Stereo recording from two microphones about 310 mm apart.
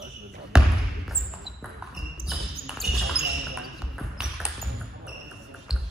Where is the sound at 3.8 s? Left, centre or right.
Centre.